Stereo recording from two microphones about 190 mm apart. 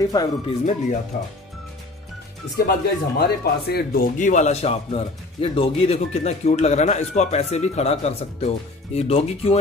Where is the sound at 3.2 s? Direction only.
55° left (ahead or behind).